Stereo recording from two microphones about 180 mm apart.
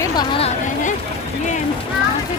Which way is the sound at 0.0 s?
20° left (ahead or behind).